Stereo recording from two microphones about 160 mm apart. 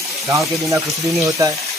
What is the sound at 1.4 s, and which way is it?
Speech, 20° right (ahead or behind).